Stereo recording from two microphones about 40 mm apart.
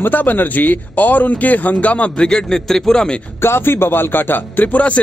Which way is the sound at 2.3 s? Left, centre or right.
Centre.